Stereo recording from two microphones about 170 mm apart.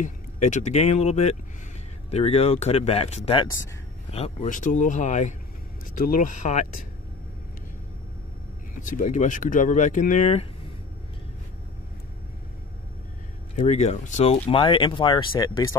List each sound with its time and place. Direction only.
0.0 s speech: 45° left (ahead or behind)
8.7 s speech: 50° left (ahead or behind)
13.6 s speech: 40° left (ahead or behind)
14.5 s speech: 30° left (ahead or behind)